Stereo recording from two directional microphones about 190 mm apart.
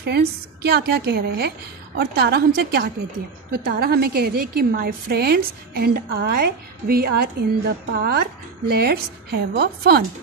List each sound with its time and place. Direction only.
0.0 s a woman's voice: 55° right (ahead or behind)